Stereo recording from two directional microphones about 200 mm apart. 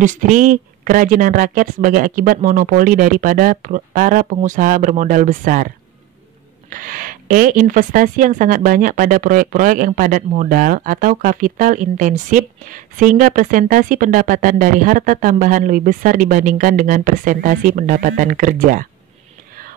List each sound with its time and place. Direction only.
0.0 s speech: 40° right (ahead or behind)
6.7 s speech: 45° right (ahead or behind)